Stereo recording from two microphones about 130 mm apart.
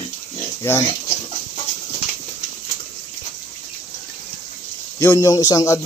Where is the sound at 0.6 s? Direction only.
20° left (ahead or behind).